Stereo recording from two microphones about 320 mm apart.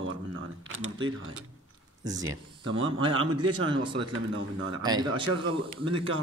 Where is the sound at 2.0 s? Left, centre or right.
Centre.